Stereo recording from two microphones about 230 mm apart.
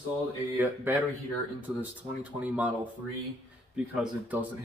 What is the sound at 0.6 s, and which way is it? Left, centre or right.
Speech, centre.